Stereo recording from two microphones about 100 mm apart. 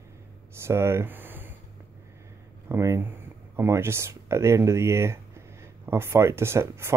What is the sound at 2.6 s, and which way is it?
Speech, 25° right (ahead or behind).